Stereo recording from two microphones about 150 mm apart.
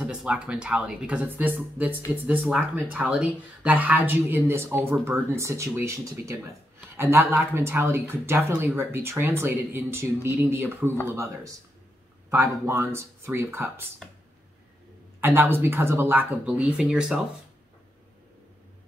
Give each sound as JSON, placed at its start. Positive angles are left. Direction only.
{"t": 0.0, "sound": "speech", "side_deg": -5}
{"t": 12.6, "sound": "speech", "side_deg": -15}
{"t": 15.1, "sound": "speech", "side_deg": -15}